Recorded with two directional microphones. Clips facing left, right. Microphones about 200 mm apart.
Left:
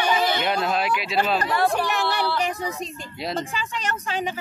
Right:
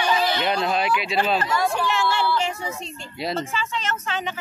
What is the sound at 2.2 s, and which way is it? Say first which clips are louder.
Music: right 1 dB; 15° left (ahead or behind).